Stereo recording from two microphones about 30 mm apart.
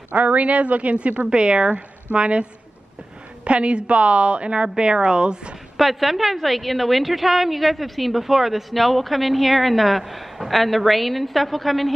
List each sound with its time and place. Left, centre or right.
0.1 s speech: right
1.2 s a woman's voice: right
3.4 s a woman's voice: right
5.8 s a woman's voice: centre
8.2 s speech: centre
8.7 s a woman's voice: centre